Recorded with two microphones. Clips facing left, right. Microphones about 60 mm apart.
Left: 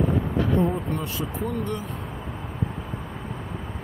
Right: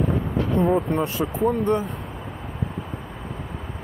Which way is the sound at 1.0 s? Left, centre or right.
Right.